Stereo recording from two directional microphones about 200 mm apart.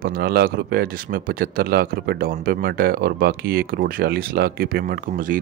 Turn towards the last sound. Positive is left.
turn(degrees=-45)  # may be behind; listen again after turning